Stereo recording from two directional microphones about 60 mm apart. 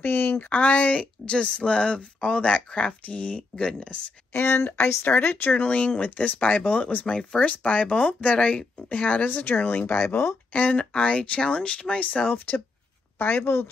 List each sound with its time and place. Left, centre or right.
0.0 s speech: left; by 4.1 s centre
4.3 s speech: left